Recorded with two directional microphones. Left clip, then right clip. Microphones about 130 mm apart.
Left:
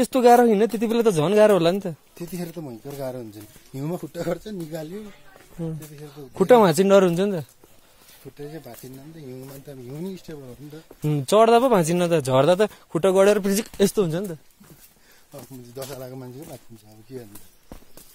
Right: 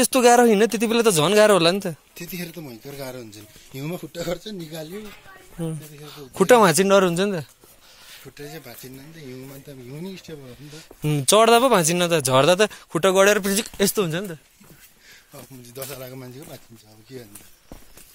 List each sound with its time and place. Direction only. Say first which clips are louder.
0.0 s speech: even; 10° left (ahead or behind)
2.5 s speech: left 2 dB; 65° left (ahead or behind)
3.0 s speech: left 4 dB; 80° left
5.6 s speech: right 1 dB; centre (ahead or behind)
6.6 s speech: right 1 dB; 30° left (ahead or behind)
6.9 s speech: left 1 dB; 40° left (ahead or behind)
7.2 s speech: right 1 dB; 25° left (ahead or behind)
9.7 s speech: left 3 dB; 80° left
11.0 s speech: right 1 dB; 5° left (ahead or behind)
11.7 s speech: right 1 dB; 35° left (ahead or behind)
12.3 s speech: right 2 dB; 15° left (ahead or behind)
12.9 s speech: even; 30° left (ahead or behind)
16.0 s speech: even; 50° left (ahead or behind)